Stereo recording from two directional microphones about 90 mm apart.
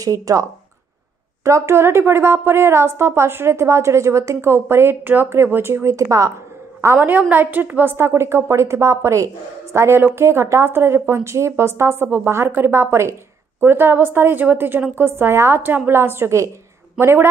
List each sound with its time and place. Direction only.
0.0 s a woman's voice: 40° right (ahead or behind)
7.1 s a woman's voice: 20° right (ahead or behind)